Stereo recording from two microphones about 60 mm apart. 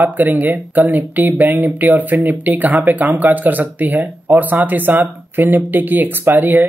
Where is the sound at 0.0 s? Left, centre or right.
Right.